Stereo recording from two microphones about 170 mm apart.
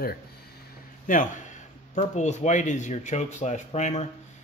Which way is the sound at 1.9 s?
45° left (ahead or behind).